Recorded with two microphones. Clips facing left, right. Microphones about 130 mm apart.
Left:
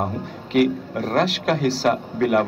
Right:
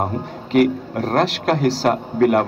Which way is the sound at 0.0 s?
45° right (ahead or behind).